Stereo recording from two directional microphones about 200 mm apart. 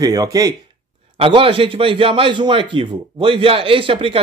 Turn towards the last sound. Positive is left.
turn(degrees=-25)  # may be behind; listen again after turning